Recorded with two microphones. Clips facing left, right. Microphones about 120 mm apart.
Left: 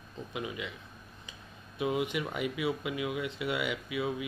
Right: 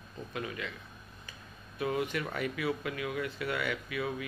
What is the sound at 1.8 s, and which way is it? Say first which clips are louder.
A man's voice: left 1 dB; 15° left (ahead or behind).